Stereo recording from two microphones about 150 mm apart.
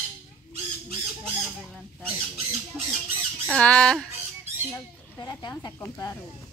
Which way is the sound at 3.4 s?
5° left (ahead or behind).